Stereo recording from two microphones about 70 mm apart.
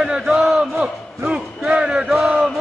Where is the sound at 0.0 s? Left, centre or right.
Centre.